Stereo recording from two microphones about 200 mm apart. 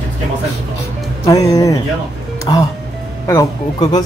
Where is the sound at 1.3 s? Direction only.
15° left (ahead or behind).